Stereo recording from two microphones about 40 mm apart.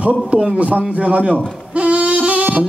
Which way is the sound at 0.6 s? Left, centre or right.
Right.